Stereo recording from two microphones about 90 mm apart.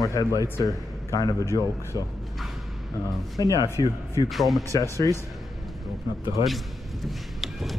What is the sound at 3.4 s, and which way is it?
Speech, 40° right (ahead or behind).